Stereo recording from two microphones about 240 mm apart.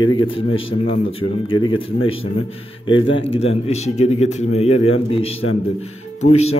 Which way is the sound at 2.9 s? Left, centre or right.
Left.